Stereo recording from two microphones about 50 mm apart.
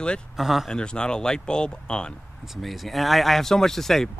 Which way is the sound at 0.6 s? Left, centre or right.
Centre.